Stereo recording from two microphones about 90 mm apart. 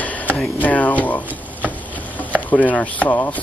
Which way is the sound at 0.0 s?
15° left (ahead or behind).